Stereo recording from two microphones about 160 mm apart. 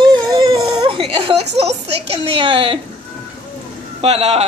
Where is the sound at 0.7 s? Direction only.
35° right (ahead or behind).